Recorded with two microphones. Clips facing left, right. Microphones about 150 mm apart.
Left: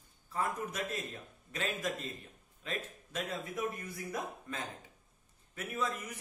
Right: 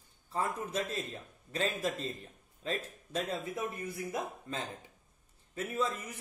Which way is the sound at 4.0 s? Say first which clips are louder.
Right 2 dB; 20° right (ahead or behind).